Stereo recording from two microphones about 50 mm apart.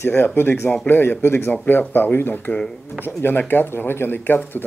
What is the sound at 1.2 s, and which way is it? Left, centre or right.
Speech, left.